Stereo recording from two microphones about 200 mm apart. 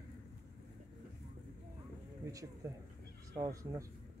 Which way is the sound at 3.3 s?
15° right (ahead or behind).